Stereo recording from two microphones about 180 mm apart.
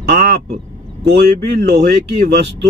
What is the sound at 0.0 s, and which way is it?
Quack, 65° right (ahead or behind).